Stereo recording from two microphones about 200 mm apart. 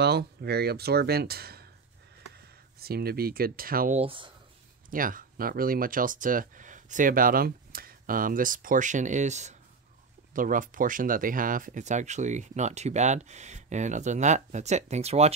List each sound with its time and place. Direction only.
0.0 s speech: 55° right (ahead or behind)
4.0 s speech: 25° right (ahead or behind)
4.9 s speech: 45° right (ahead or behind)